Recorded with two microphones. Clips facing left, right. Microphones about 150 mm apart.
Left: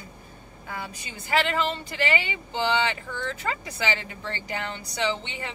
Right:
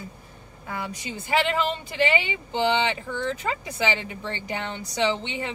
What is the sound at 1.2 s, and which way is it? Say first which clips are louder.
Speech: right 1 dB; 20° right (ahead or behind).